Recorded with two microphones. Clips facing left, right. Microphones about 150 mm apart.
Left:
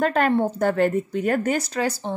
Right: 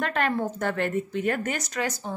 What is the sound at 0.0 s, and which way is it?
Speech, 40° left (ahead or behind).